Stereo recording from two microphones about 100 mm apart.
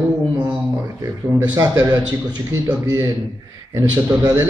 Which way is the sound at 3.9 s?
40° right (ahead or behind).